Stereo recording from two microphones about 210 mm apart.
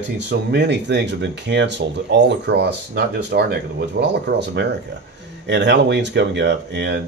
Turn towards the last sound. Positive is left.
turn(degrees=-55)  # may be behind; listen again after turning